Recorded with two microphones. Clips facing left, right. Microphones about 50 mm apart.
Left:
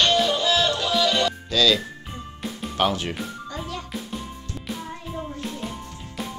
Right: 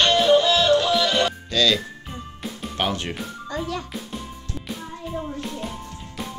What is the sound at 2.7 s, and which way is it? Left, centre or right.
Speech, centre.